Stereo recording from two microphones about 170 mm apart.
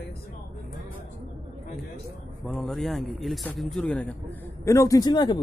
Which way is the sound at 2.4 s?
5° left (ahead or behind).